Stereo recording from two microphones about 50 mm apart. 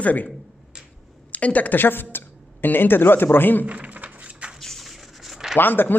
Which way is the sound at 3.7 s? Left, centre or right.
Right.